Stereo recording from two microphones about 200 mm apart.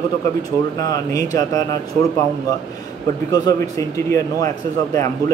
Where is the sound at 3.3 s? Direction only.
15° left (ahead or behind).